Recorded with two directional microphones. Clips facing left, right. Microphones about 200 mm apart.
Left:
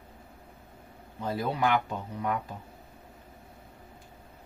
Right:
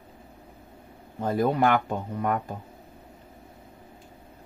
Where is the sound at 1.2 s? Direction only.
50° right (ahead or behind).